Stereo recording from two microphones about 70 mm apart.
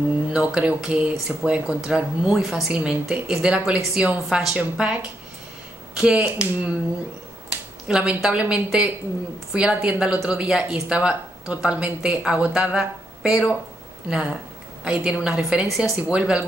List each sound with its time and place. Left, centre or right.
0.3 s speech: centre
7.9 s speech: centre